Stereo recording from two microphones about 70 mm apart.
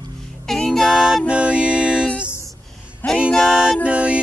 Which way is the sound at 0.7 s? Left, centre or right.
Centre.